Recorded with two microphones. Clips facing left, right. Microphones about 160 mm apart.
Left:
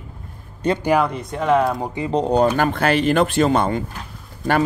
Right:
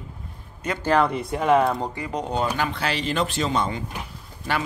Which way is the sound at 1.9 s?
25° left (ahead or behind).